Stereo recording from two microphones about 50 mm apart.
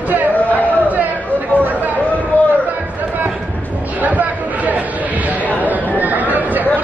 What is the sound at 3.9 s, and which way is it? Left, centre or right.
Chatter, right.